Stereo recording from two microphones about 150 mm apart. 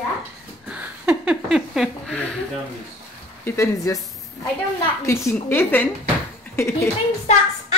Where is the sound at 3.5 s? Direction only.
20° left (ahead or behind).